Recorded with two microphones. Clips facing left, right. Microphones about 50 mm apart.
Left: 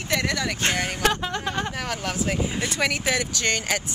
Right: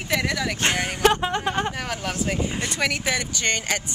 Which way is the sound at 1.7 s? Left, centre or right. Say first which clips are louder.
Even; centre.